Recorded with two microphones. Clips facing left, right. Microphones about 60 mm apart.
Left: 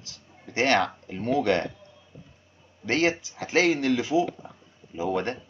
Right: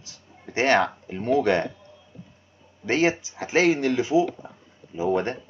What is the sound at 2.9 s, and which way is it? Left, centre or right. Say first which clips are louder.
Speech: right 2 dB; right.